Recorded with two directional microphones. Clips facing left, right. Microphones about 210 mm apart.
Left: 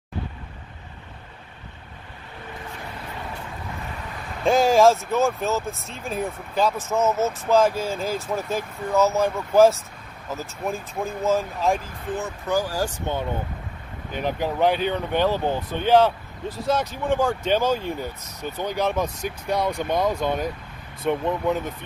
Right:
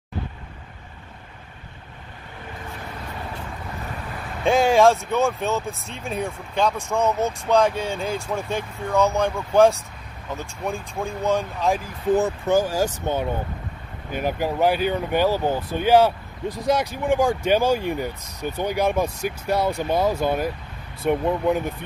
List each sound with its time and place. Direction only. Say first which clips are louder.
4.5 s speech: even; centre (ahead or behind)
12.4 s speech: left 1 dB; 20° right (ahead or behind)
14.1 s speech: right 1 dB; 10° right (ahead or behind)